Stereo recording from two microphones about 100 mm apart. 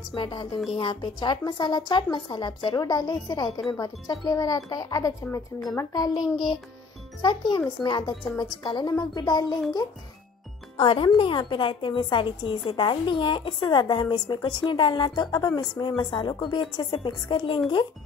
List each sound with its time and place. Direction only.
0.1 s a woman's voice: 50° left (ahead or behind)
10.8 s a woman's voice: 55° left (ahead or behind)